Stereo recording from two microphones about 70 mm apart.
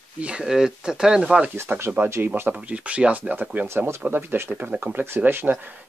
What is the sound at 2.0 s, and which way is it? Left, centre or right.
Speech, right.